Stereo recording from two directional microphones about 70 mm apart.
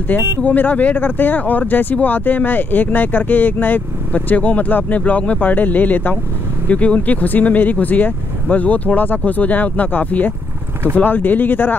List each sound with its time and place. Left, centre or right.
0.4 s speech: left